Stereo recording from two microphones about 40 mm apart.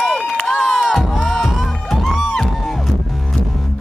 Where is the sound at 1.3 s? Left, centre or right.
Centre.